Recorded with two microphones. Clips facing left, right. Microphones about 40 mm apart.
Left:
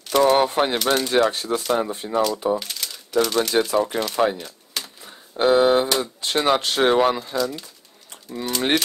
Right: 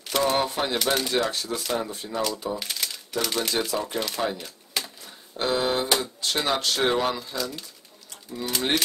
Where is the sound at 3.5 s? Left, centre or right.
Left.